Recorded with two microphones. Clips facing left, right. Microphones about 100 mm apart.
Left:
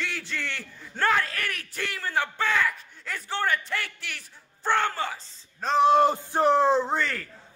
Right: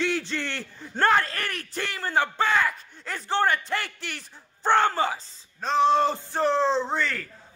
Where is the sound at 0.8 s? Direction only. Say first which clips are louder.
Right 3 dB; 30° right (ahead or behind).